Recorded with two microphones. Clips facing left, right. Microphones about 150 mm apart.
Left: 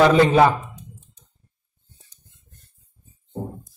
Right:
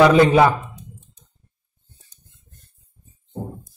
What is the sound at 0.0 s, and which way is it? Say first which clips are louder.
Speech: right 2 dB; 15° right (ahead or behind).